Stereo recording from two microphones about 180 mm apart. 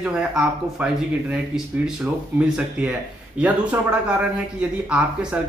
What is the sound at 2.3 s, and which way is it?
Speech, 5° right (ahead or behind).